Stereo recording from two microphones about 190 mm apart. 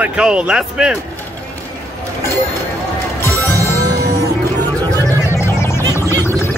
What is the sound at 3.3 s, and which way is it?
Music, 15° right (ahead or behind).